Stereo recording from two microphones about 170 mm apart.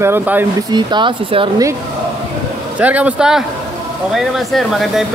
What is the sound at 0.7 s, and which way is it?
Speech, 25° right (ahead or behind).